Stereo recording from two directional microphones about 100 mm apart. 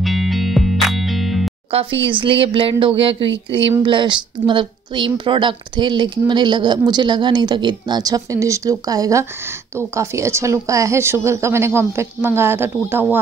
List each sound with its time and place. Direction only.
0.0 s music: centre (ahead or behind)
1.7 s a woman's voice: 70° right (ahead or behind); by 13.2 s 20° right (ahead or behind)